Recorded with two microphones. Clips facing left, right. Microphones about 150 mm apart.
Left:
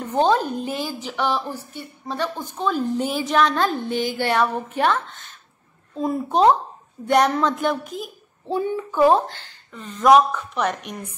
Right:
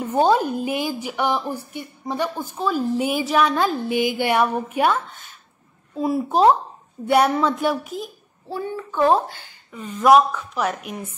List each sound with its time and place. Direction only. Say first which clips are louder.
0.0 s a woman's voice: right 1 dB; 10° right (ahead or behind)
8.5 s a child's voice: left 4 dB; 15° left (ahead or behind)
9.3 s a woman's voice: right 1 dB; 10° right (ahead or behind)